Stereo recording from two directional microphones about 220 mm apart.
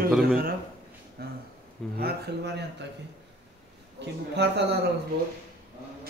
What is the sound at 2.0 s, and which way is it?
Speech, 45° right (ahead or behind).